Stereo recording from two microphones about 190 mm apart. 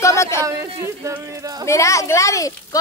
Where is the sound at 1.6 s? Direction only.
15° left (ahead or behind).